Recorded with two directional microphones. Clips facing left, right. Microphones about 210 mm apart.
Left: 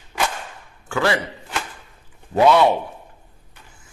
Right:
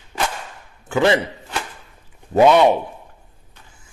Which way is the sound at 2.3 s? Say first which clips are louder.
Right 2 dB; 20° right (ahead or behind).